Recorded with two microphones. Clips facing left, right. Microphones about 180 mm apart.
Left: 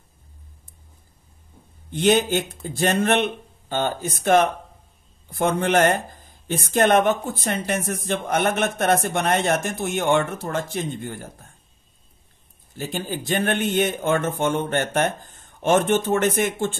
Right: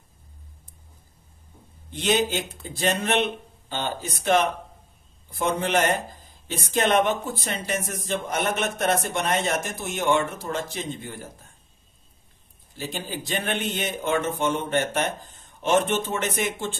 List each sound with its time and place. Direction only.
1.9 s speech: 55° left (ahead or behind)
12.7 s speech: 50° left (ahead or behind)